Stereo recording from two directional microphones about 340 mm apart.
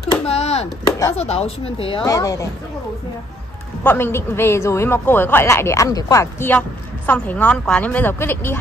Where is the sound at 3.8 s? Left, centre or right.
Centre.